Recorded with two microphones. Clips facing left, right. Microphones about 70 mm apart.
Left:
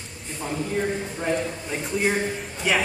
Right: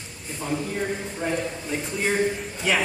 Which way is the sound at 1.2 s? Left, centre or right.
Centre.